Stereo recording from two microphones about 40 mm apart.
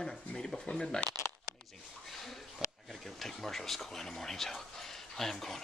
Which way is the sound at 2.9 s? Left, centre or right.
Centre.